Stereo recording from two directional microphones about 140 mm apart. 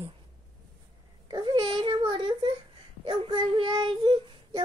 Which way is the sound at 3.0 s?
35° right (ahead or behind).